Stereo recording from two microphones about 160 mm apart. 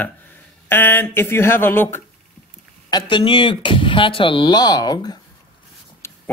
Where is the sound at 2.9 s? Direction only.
25° left (ahead or behind).